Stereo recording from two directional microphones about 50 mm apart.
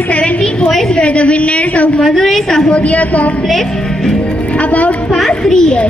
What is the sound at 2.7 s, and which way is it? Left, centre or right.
Speech, left.